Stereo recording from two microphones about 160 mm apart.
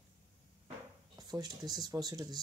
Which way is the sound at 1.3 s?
25° right (ahead or behind).